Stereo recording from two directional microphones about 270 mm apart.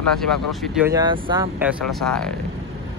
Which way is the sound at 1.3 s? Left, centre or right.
Centre.